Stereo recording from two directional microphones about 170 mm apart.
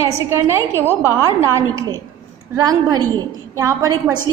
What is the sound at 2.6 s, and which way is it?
A woman's voice, 20° right (ahead or behind).